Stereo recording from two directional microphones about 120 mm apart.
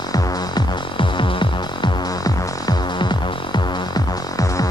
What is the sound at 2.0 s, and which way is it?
Music, 30° left (ahead or behind).